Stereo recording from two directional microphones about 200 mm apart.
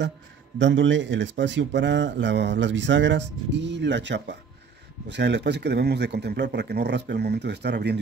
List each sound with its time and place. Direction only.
0.6 s speech: 65° right (ahead or behind)